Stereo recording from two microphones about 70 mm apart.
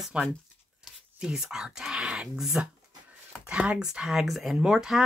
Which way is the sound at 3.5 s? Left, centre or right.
Centre.